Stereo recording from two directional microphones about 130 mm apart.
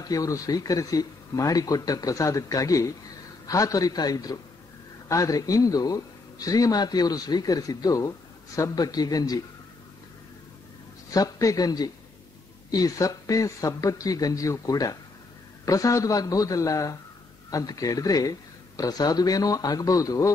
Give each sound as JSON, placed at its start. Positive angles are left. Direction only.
{"t": 0.0, "sound": "speech", "side_deg": 25}
{"t": 11.1, "sound": "speech", "side_deg": 25}